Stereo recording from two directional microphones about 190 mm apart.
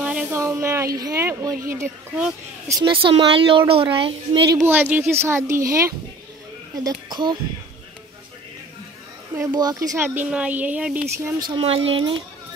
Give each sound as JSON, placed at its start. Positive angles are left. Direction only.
{"t": 0.0, "sound": "a sound", "side_deg": -5}
{"t": 2.8, "sound": "a woman's voice", "side_deg": -25}
{"t": 9.4, "sound": "speech", "side_deg": -20}
{"t": 11.3, "sound": "a woman's voice", "side_deg": -25}